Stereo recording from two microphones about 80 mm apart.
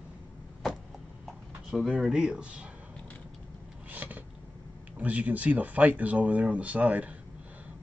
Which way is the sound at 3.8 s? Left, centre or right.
Centre.